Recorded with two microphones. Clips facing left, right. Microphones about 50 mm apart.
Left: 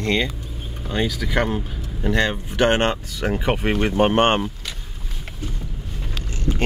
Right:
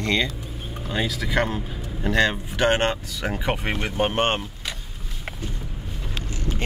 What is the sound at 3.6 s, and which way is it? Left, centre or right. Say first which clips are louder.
Speech: left 6 dB; centre.